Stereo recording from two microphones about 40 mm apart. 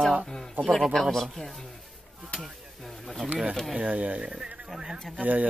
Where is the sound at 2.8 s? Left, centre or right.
Centre.